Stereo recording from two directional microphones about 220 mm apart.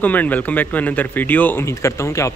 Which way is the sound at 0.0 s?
5° left (ahead or behind).